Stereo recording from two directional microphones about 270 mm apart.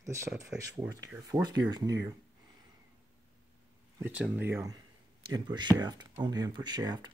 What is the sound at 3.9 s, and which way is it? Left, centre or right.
Speech, centre.